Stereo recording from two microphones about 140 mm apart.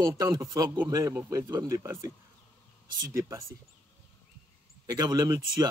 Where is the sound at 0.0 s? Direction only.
25° right (ahead or behind).